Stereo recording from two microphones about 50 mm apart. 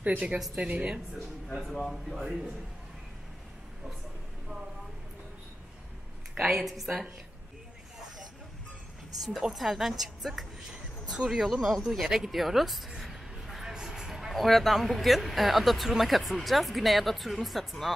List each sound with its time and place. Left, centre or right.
0.0 s speech: right
1.7 s speech: centre
2.2 s a man's voice: centre
6.6 s speech: centre
9.2 s speech: centre
10.7 s a sound: centre
11.2 s speech: centre
13.0 s a sound: centre
14.3 s speech: centre